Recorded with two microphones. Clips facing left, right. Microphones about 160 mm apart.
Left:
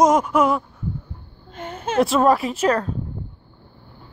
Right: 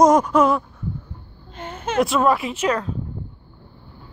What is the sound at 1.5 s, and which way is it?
A woman's voice, 40° left (ahead or behind).